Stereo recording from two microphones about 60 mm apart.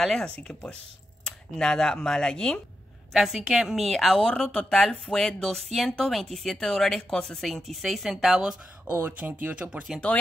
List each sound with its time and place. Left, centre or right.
0.2 s speech: centre
3.1 s a woman's voice: centre
3.9 s a woman's voice: centre
8.9 s speech: right
9.9 s speech: centre